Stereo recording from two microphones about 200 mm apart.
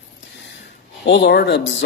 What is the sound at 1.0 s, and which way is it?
Speech, 60° left (ahead or behind).